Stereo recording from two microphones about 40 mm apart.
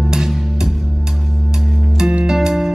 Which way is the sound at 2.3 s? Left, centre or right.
Centre.